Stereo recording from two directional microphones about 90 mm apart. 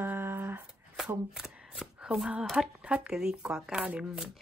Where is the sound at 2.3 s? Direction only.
5° right (ahead or behind).